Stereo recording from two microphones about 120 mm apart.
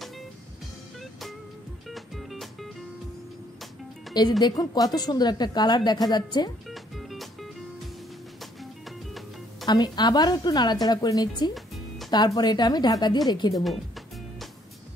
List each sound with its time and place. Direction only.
1.9 s music: centre (ahead or behind)
4.4 s speech: 35° left (ahead or behind)
6.7 s music: centre (ahead or behind)
8.4 s music: centre (ahead or behind)
9.7 s speech: 35° left (ahead or behind)
11.5 s music: centre (ahead or behind)
12.4 s speech: 35° left (ahead or behind)